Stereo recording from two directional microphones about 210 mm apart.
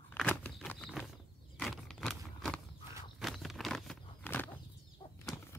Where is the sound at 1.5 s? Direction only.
Centre (ahead or behind).